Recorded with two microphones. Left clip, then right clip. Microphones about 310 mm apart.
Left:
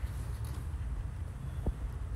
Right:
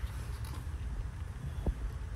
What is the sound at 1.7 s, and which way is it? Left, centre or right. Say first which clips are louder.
Heart sounds: right 1 dB; centre.